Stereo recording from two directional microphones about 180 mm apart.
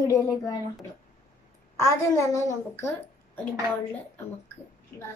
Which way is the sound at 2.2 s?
15° left (ahead or behind).